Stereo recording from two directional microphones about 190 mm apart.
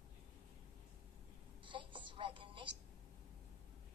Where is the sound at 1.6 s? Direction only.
25° right (ahead or behind).